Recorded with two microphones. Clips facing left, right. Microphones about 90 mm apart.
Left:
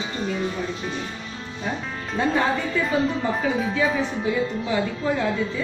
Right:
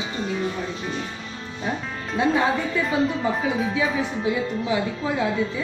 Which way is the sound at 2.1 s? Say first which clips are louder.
Right 1 dB; centre (ahead or behind).